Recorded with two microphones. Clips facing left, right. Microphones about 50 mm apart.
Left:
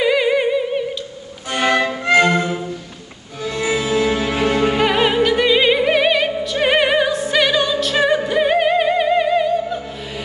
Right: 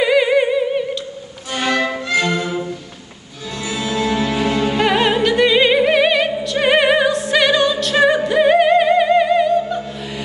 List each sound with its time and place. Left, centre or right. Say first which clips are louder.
0.0 s music: right 2 dB; centre
1.5 s music: left 2 dB; left
2.0 s violin: left 4 dB; left
3.4 s music: left 4 dB; left
4.7 s opera: even; centre